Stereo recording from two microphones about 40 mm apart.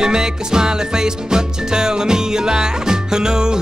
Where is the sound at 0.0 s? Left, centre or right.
Centre.